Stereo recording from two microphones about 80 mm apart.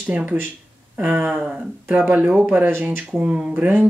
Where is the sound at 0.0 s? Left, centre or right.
Centre.